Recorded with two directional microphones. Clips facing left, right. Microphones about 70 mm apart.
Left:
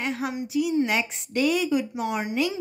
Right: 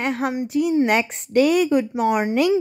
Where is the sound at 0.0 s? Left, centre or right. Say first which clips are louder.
Right 6 dB; right.